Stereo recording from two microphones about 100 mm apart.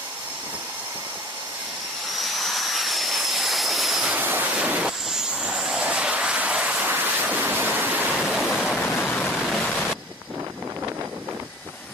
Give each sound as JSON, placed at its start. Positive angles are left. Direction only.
{"t": 2.1, "sound": "vehicle", "side_deg": 0}
{"t": 4.1, "sound": "vehicle", "side_deg": -20}
{"t": 8.3, "sound": "waves", "side_deg": 0}
{"t": 8.6, "sound": "a sound", "side_deg": 0}
{"t": 9.3, "sound": "waterfall", "side_deg": 5}